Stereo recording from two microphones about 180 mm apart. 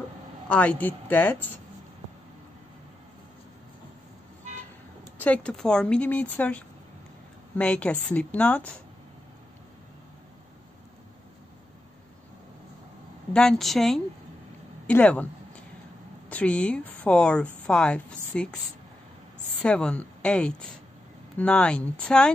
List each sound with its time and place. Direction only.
0.5 s speech: 10° left (ahead or behind)
5.2 s speech: 5° left (ahead or behind)
13.3 s speech: 5° left (ahead or behind)
19.6 s speech: 5° left (ahead or behind)